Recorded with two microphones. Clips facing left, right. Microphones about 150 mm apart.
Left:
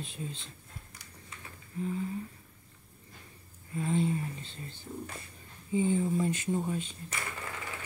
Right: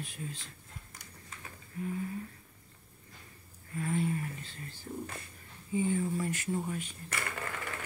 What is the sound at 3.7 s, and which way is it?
Speech, 25° left (ahead or behind).